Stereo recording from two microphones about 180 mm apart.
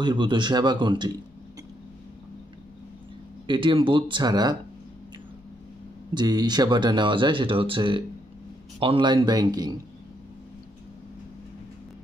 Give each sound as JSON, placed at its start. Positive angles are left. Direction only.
{"t": 0.0, "sound": "speech", "side_deg": -25}
{"t": 3.4, "sound": "speech", "side_deg": -25}
{"t": 6.1, "sound": "speech", "side_deg": -25}